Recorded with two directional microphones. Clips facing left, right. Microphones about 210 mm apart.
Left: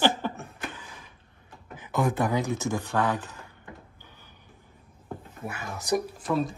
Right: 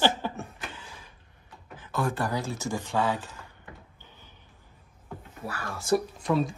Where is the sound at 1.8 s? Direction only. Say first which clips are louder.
Left 3 dB; 15° left (ahead or behind).